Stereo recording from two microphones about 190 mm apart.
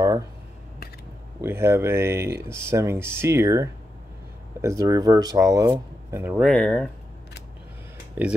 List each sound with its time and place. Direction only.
1.4 s speech: 15° right (ahead or behind)
6.4 s speech: 5° left (ahead or behind)
8.2 s speech: 10° right (ahead or behind)